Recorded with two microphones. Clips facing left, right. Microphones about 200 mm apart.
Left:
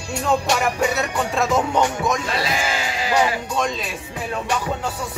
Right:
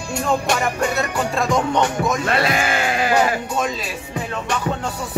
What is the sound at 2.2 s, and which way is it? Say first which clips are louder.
Speech: right 4 dB; 60° right (ahead or behind).